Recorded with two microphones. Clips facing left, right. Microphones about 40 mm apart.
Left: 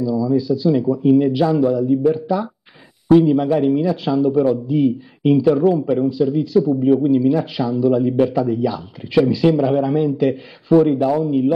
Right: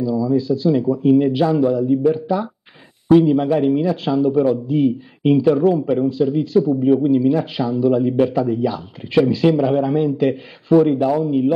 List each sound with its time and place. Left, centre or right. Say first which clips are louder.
0.0 s a man's voice: even; right
0.7 s speech: even; centre
0.9 s speech: even; centre
9.1 s a man's voice: even; centre
9.7 s speech: even; centre